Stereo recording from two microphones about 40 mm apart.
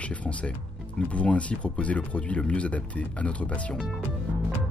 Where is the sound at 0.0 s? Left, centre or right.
Left.